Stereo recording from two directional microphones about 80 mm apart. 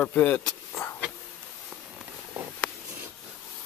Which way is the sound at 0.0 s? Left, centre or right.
Left.